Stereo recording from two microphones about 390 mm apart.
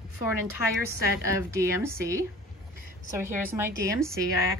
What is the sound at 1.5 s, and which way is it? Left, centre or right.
Speech, centre.